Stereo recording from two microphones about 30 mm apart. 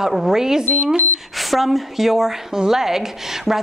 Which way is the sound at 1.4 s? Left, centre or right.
Centre.